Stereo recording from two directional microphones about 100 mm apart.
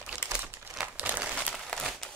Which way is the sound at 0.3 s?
20° right (ahead or behind).